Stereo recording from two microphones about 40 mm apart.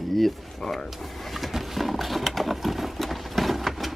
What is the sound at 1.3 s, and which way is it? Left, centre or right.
Horse, centre.